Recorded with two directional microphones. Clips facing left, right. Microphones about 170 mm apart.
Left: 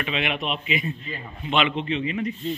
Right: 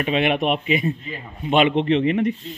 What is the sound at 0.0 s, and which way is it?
Speech, 45° right (ahead or behind).